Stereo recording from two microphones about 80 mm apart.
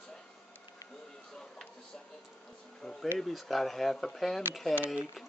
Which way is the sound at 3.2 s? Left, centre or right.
Centre.